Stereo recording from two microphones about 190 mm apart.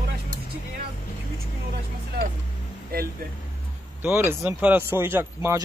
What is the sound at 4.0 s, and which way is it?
Speech, 10° right (ahead or behind).